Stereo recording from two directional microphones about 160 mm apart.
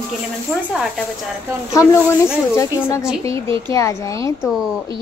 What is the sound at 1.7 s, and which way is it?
A woman's voice, 15° left (ahead or behind).